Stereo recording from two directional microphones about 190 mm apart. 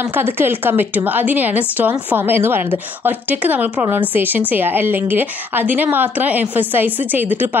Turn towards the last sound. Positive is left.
turn(degrees=-10)  # may be behind; listen again after turning